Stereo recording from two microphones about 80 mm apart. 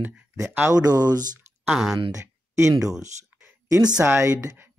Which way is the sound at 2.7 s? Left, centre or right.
Right.